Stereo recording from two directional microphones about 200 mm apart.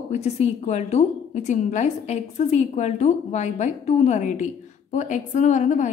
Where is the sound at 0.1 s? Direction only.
35° left (ahead or behind).